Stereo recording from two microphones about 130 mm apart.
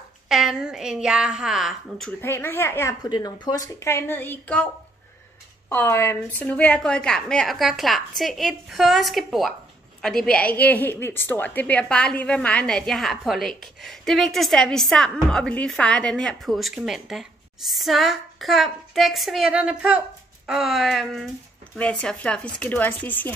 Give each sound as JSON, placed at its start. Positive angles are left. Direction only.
{"t": 0.3, "sound": "a woman's voice", "side_deg": -5}
{"t": 2.2, "sound": "speech", "side_deg": 20}
{"t": 3.0, "sound": "speech", "side_deg": 30}
{"t": 5.7, "sound": "a woman's voice", "side_deg": 20}